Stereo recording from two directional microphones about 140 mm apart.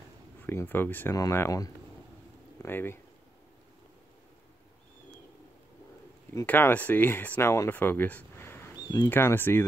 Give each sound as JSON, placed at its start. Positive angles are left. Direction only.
{"t": 0.5, "sound": "speech", "side_deg": 15}
{"t": 6.4, "sound": "speech", "side_deg": 10}
{"t": 8.8, "sound": "speech", "side_deg": 30}
{"t": 9.1, "sound": "speech", "side_deg": 15}